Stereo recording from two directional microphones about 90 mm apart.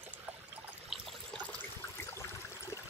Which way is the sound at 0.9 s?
5° right (ahead or behind).